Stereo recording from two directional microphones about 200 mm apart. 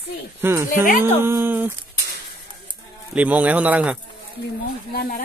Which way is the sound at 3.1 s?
5° right (ahead or behind).